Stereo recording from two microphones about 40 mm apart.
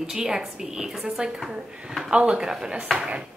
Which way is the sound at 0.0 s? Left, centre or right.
Centre.